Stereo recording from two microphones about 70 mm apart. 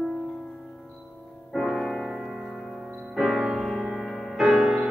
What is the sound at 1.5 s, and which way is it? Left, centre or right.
Music, centre.